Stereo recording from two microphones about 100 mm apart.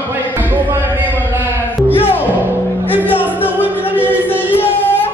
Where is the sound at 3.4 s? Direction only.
20° left (ahead or behind).